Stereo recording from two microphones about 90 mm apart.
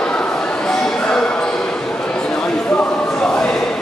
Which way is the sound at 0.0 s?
10° left (ahead or behind).